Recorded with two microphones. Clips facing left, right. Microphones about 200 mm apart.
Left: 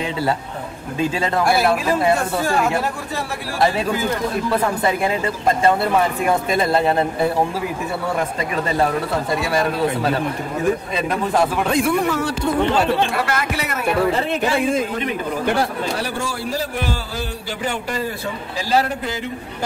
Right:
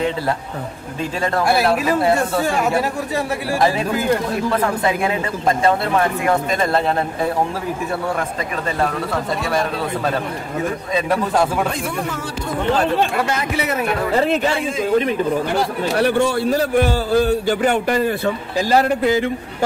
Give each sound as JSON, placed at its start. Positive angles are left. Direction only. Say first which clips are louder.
{"t": 16.0, "sound": "a man's voice", "louder": "right 9 dB", "side_deg": -60}